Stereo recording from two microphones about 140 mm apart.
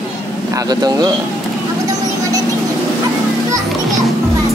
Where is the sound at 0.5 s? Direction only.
25° right (ahead or behind).